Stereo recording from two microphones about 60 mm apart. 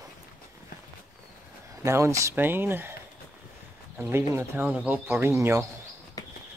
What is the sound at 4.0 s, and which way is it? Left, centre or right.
Speech, right.